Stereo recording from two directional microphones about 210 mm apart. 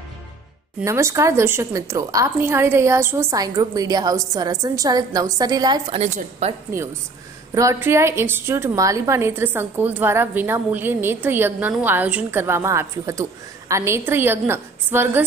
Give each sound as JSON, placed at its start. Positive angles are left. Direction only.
{"t": 0.7, "sound": "a woman's voice", "side_deg": -15}
{"t": 5.9, "sound": "a woman's voice", "side_deg": -30}
{"t": 6.7, "sound": "a woman's voice", "side_deg": -15}